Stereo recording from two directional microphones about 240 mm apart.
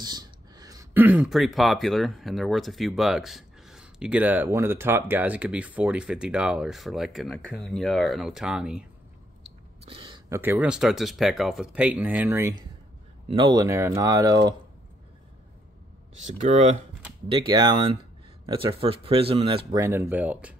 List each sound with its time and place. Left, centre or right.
0.0 s speech: centre
9.8 s a sound: right
10.4 s speech: centre
16.2 s speech: right
17.3 s speech: centre